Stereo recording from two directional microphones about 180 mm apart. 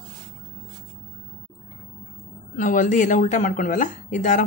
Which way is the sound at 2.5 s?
45° left (ahead or behind).